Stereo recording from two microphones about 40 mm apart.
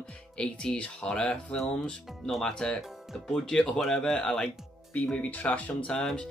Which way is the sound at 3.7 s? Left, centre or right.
Centre.